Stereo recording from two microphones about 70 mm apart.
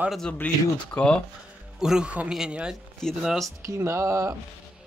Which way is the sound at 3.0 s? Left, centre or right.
Centre.